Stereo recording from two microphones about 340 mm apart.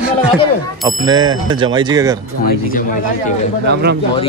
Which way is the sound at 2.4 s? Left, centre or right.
Left.